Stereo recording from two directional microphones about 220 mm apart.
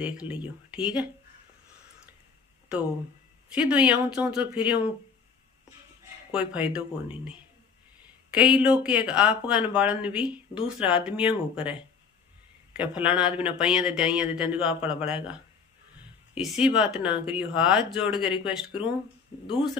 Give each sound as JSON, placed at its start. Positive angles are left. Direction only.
{"t": 0.0, "sound": "speech", "side_deg": -5}
{"t": 3.5, "sound": "speech", "side_deg": -5}
{"t": 6.3, "sound": "speech", "side_deg": -5}
{"t": 16.3, "sound": "speech", "side_deg": 0}